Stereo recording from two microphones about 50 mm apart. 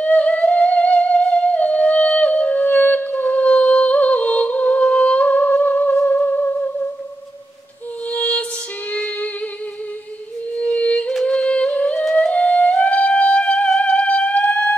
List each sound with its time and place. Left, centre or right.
0.0 s music: left
8.1 s music: left
10.6 s a sound: left
11.2 s singing: left
12.2 s music: left